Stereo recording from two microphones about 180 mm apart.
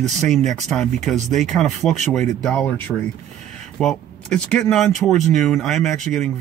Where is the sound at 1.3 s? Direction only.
45° right (ahead or behind).